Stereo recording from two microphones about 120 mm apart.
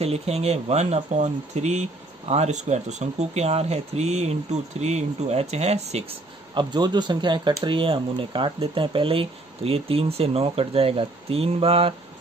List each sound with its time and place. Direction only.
0.0 s speech: 60° right (ahead or behind)
6.5 s speech: 40° right (ahead or behind)